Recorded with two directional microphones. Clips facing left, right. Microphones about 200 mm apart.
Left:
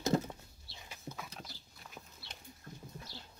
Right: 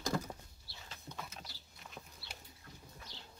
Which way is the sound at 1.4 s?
Centre (ahead or behind).